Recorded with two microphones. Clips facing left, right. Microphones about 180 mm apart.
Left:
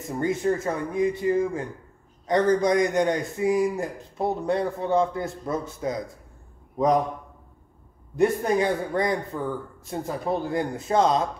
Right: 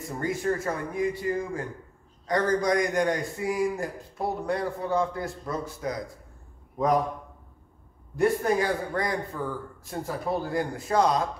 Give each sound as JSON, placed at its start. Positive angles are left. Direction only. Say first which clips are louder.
{"t": 0.2, "sound": "a man's voice", "louder": "left 4 dB", "side_deg": 20}
{"t": 8.2, "sound": "a man's voice", "louder": "left 2 dB", "side_deg": 20}